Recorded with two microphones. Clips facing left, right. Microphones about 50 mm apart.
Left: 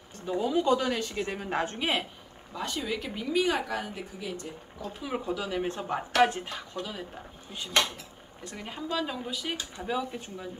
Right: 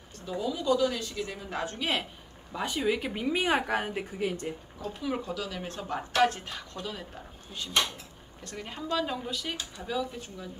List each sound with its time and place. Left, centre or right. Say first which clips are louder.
0.2 s speech: left 4 dB; left
0.5 s speech: left 1 dB; left
1.8 s speech: left 1 dB; centre
2.5 s speech: right 4 dB; centre; by 4.3 s right
5.0 s speech: left 1 dB; centre
8.5 s speech: right 1 dB; centre
9.8 s speech: left 1 dB; left